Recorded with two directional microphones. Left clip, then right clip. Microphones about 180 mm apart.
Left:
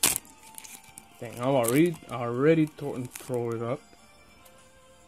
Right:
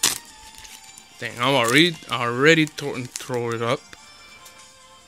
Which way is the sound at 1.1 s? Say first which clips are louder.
Right 6 dB; 20° right (ahead or behind).